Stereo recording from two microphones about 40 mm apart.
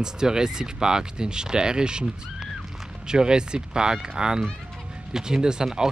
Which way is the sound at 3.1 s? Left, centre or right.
Centre.